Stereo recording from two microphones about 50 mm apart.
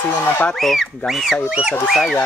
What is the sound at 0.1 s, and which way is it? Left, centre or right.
Speech, left.